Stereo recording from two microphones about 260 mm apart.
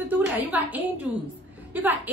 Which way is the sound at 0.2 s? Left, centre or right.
Centre.